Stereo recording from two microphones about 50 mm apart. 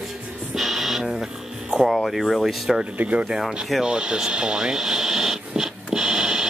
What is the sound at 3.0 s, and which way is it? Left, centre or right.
Speech, right.